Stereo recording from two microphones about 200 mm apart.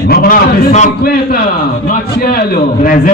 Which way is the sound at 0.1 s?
50° left (ahead or behind).